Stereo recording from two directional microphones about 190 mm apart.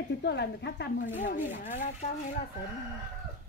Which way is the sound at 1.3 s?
40° left (ahead or behind).